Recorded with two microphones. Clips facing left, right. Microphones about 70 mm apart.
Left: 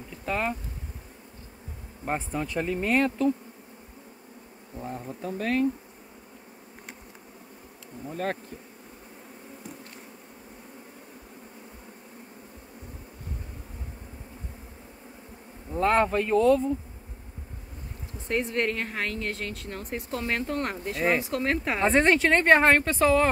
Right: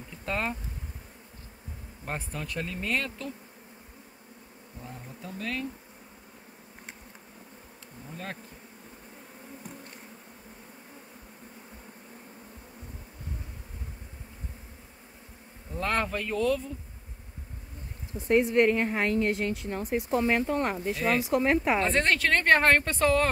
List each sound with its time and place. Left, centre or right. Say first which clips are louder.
0.2 s speech: left 3 dB; centre
2.0 s speech: left 6 dB; centre
4.7 s speech: left 8 dB; left
8.1 s bee: left 9 dB; left
15.7 s speech: left 7 dB; centre
18.3 s a woman's voice: right 5 dB; centre
19.5 s a woman's voice: right 5 dB; centre
21.9 s speech: left 4 dB; centre